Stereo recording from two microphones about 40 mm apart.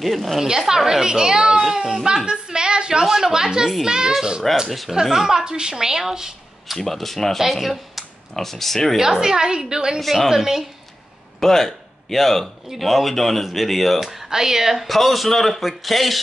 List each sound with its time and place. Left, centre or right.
0.0 s a man's voice: centre
0.4 s a woman's voice: centre
4.6 s a man's voice: centre
5.0 s a woman's voice: centre
6.8 s speech: centre
8.9 s a woman's voice: centre
9.9 s a man's voice: centre
11.3 s a man's voice: centre
14.0 s a woman's voice: centre
14.9 s a man's voice: centre